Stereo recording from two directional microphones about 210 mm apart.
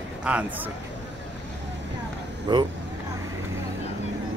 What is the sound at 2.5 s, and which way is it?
Speech, 20° right (ahead or behind).